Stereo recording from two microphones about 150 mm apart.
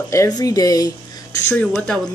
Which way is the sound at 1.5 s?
5° left (ahead or behind).